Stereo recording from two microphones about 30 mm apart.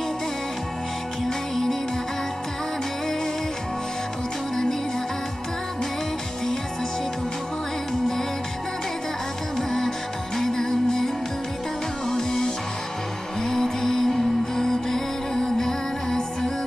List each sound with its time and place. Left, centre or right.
1.5 s music: centre
9.6 s music: centre
12.1 s music: centre